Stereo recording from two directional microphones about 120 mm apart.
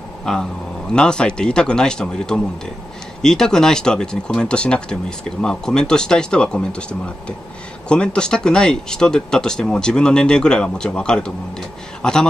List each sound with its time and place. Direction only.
0.2 s a man's voice: 5° left (ahead or behind)